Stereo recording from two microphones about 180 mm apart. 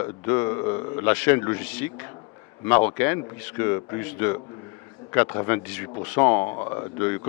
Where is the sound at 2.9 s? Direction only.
15° left (ahead or behind).